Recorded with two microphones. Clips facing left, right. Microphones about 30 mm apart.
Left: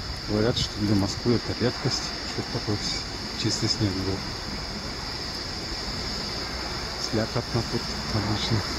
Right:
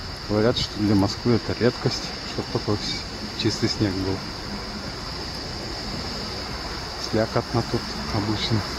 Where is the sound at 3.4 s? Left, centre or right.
Right.